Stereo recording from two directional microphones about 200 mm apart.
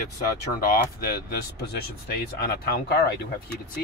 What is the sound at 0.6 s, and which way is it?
Speech, 45° left (ahead or behind).